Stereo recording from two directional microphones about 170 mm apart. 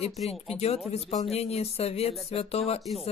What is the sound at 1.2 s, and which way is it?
Speech, 40° left (ahead or behind).